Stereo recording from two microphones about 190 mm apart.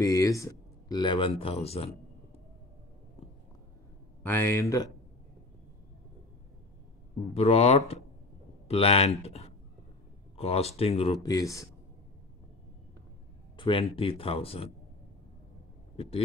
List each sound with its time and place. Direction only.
0.0 s speech: 15° left (ahead or behind); by 1.9 s 30° left (ahead or behind)
4.2 s speech: 10° left (ahead or behind)
7.3 s speech: 35° left (ahead or behind)
11.2 s speech: 15° left (ahead or behind)
13.6 s a sound: 25° left (ahead or behind)
13.9 s speech: 30° left (ahead or behind)